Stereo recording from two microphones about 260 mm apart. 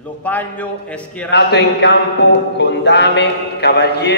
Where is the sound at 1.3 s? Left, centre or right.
Left.